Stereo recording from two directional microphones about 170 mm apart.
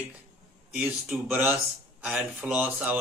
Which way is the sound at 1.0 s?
Centre (ahead or behind).